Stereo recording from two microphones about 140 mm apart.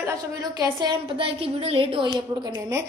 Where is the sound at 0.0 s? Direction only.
25° right (ahead or behind); by 2.0 s 40° right (ahead or behind).